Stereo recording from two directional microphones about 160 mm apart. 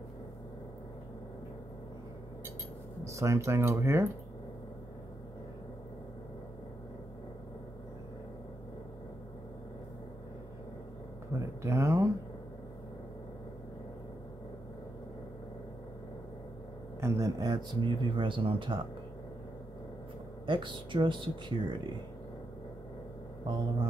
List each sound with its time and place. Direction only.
3.1 s speech: 20° right (ahead or behind)
11.6 s a sound: 15° right (ahead or behind)
17.0 s speech: 20° right (ahead or behind)
20.4 s speech: 30° right (ahead or behind)
23.4 s speech: 25° right (ahead or behind)